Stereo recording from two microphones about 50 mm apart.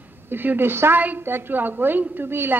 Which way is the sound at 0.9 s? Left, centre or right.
Right.